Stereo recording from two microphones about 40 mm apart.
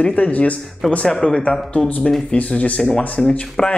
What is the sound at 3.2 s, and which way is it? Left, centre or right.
Speech, centre.